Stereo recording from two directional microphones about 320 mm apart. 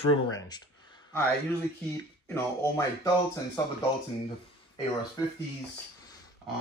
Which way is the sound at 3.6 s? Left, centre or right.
Centre.